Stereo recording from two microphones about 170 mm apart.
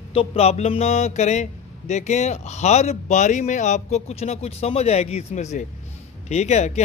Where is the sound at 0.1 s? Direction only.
35° left (ahead or behind).